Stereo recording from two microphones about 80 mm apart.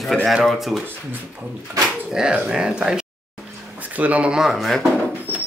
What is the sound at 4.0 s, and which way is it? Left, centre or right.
Speech, centre.